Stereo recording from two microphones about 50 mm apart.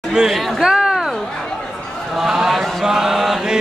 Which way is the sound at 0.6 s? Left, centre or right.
Centre.